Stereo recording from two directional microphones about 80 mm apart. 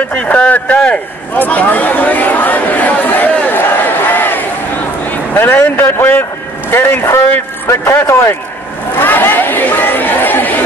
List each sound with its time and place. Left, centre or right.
0.1 s a man's voice: centre